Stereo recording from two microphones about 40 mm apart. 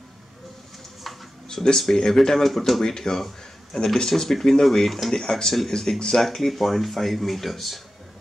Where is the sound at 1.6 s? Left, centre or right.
Centre.